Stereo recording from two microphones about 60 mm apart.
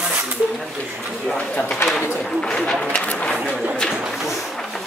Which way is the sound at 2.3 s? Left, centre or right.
Centre.